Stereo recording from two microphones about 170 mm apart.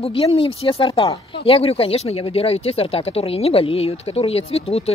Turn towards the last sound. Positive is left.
turn(degrees=35)  # may be behind; listen again after turning